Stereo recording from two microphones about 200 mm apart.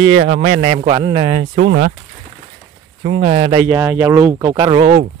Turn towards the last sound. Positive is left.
turn(degrees=-25)  # may be behind; listen again after turning